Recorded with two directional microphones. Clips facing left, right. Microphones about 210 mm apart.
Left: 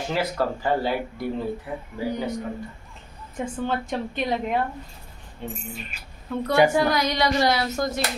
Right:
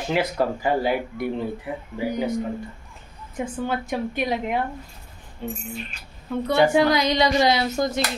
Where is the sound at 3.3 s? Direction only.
10° right (ahead or behind).